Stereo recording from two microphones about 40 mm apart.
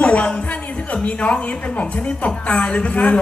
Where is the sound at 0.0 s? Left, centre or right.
Left.